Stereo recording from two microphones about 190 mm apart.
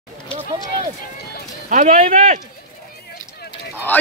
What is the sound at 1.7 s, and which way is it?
Speech, 45° right (ahead or behind).